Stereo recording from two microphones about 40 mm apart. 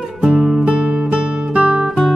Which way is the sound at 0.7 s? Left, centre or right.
Right.